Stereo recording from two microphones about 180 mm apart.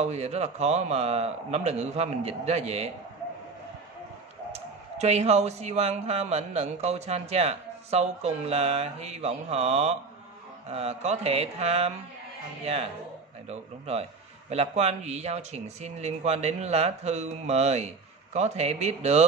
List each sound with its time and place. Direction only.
0.0 s speech: 40° right (ahead or behind)
4.5 s speech: 35° right (ahead or behind)